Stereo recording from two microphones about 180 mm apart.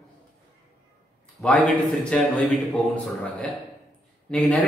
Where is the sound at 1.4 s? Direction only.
Centre (ahead or behind).